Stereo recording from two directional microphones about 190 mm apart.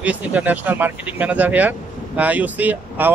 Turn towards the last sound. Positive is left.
turn(degrees=-10)  # may be behind; listen again after turning